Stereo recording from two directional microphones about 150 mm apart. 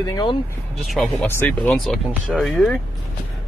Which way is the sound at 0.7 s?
Centre (ahead or behind).